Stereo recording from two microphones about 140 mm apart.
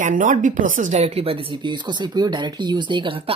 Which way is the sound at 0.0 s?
70° right (ahead or behind).